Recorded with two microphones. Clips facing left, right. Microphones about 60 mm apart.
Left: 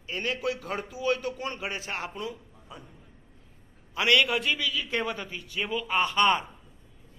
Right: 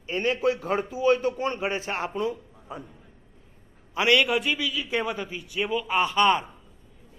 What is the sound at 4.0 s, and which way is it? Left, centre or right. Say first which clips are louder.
A man's voice: right 2 dB; centre.